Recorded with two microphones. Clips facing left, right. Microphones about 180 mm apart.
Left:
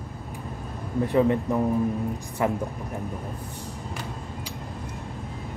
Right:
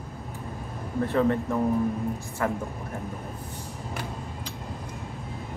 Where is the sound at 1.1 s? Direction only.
15° left (ahead or behind).